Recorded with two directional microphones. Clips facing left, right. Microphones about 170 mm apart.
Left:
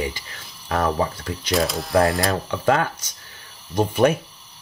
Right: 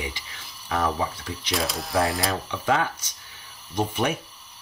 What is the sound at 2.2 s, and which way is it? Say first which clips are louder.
Speech: left 5 dB; 50° left (ahead or behind).